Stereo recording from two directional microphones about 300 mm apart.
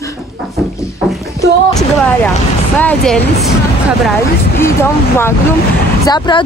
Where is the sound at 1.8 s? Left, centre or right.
Centre.